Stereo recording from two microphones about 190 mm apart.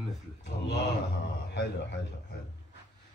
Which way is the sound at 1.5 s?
65° left (ahead or behind).